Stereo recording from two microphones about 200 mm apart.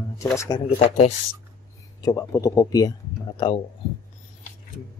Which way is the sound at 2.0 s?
15° left (ahead or behind).